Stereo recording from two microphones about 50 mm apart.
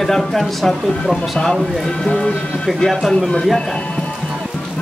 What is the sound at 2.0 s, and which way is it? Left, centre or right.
Speech, left.